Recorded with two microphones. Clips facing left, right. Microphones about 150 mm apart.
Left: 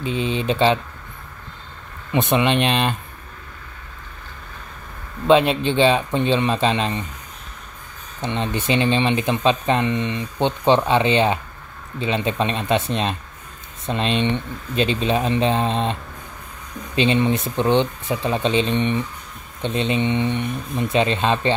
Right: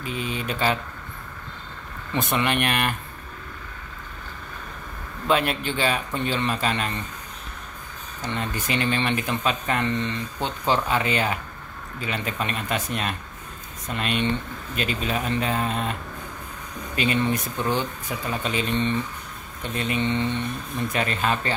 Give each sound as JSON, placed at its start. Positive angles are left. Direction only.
{"t": 0.0, "sound": "speech", "side_deg": 25}
{"t": 2.1, "sound": "speech", "side_deg": 20}
{"t": 5.2, "sound": "speech", "side_deg": 25}
{"t": 8.2, "sound": "speech", "side_deg": 25}